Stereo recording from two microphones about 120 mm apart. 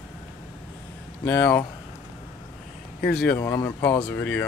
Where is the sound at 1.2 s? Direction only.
15° left (ahead or behind).